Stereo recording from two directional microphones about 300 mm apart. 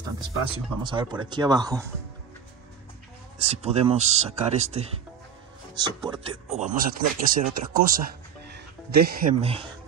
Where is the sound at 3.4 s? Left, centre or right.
Right.